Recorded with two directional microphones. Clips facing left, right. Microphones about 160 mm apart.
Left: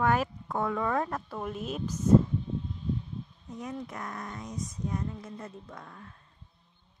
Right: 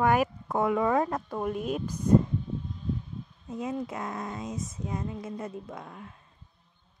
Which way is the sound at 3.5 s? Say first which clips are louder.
Right 6 dB; 25° right (ahead or behind).